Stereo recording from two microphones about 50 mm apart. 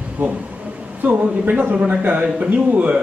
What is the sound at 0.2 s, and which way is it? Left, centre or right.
Speech, right.